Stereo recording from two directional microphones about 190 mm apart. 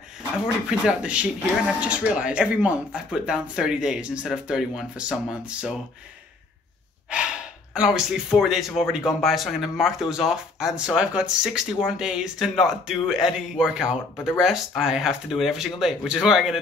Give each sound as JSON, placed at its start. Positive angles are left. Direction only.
{"t": 0.7, "sound": "speech", "side_deg": -5}
{"t": 7.1, "sound": "speech", "side_deg": -5}